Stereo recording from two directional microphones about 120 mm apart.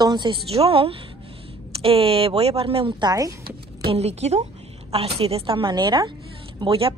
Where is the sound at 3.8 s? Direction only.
60° right (ahead or behind); by 6.1 s 35° right (ahead or behind).